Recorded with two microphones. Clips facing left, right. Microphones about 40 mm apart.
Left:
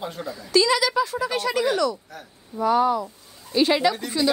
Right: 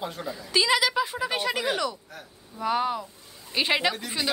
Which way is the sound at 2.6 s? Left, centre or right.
Right.